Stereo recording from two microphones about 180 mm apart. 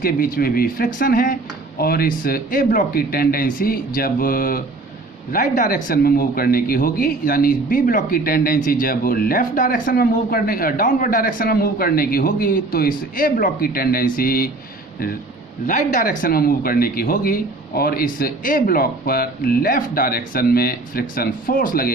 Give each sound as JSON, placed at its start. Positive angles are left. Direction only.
{"t": 0.0, "sound": "speech", "side_deg": 50}
{"t": 15.6, "sound": "speech", "side_deg": 50}